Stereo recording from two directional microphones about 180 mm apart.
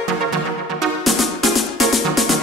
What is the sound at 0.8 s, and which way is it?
Music, centre (ahead or behind).